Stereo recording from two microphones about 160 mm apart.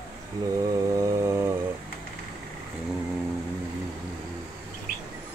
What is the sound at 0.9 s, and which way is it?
Chainsaw, 20° right (ahead or behind).